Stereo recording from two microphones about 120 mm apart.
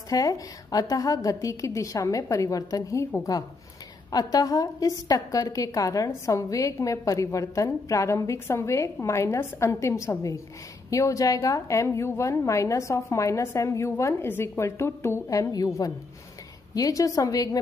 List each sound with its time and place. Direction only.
0.1 s a woman's voice: 30° left (ahead or behind)
4.1 s a woman's voice: 30° left (ahead or behind)